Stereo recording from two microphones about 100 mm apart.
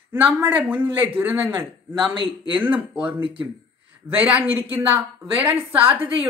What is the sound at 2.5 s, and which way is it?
Speech, 10° right (ahead or behind).